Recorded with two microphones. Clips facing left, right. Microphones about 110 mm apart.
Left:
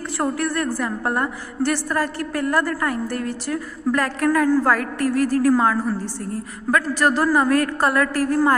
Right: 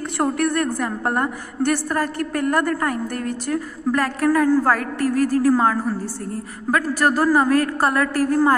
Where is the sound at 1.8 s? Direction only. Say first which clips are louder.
Right 1 dB; 40° right (ahead or behind).